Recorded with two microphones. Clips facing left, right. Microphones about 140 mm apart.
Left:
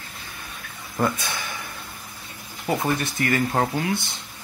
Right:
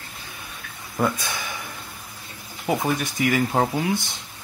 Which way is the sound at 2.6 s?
10° right (ahead or behind).